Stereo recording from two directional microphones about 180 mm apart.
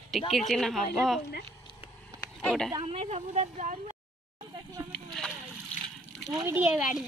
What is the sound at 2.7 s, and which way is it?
A woman's voice, 30° right (ahead or behind).